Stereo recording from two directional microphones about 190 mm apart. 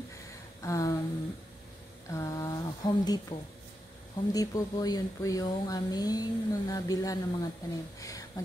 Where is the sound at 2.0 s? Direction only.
15° left (ahead or behind).